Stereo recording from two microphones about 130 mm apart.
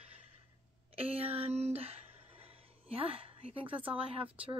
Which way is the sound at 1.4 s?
55° right (ahead or behind).